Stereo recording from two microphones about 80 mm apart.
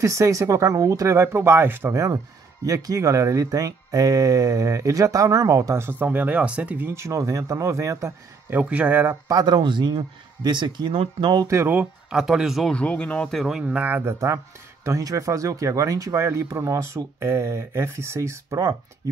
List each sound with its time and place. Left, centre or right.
0.0 s speech: right
2.6 s speech: right
5.9 s speech: right
6.9 s speech: right
8.5 s speech: centre
9.3 s speech: right
11.4 s speech: right
12.1 s speech: centre
12.7 s speech: centre
13.5 s speech: centre
14.9 s speech: right